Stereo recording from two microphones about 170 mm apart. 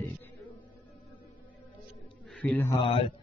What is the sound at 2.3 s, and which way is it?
Mantra, centre (ahead or behind).